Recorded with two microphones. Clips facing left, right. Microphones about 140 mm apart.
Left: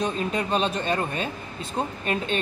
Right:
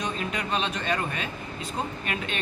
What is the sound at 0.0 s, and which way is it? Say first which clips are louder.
A man's voice: left 5 dB; 30° left (ahead or behind).